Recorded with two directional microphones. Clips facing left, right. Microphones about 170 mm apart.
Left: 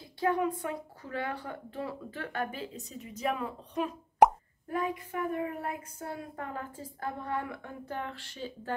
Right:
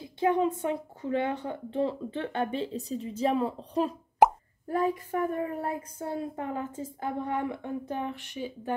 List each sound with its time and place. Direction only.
0.0 s speech: 20° right (ahead or behind)